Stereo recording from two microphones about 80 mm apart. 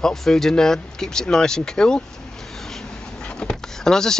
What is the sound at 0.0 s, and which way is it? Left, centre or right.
Speech, centre.